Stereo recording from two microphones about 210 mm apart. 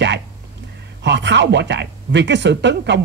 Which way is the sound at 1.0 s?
55° right (ahead or behind).